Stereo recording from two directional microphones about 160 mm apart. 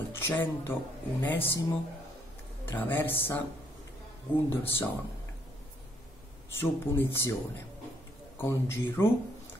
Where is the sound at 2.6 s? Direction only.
15° left (ahead or behind).